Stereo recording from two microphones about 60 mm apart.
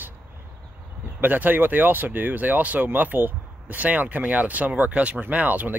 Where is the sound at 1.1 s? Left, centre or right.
Right.